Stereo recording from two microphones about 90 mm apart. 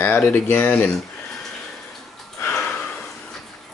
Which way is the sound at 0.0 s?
20° left (ahead or behind).